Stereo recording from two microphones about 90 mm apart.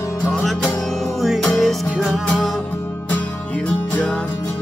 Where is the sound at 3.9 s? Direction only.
15° left (ahead or behind).